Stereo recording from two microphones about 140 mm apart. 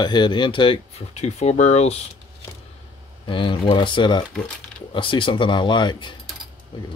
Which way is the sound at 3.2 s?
35° left (ahead or behind).